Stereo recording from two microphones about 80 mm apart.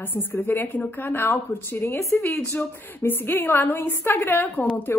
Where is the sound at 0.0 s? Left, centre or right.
Left.